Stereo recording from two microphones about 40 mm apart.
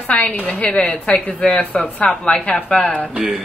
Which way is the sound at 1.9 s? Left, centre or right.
Left.